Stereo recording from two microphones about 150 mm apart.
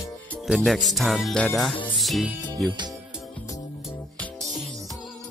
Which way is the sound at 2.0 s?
Centre (ahead or behind).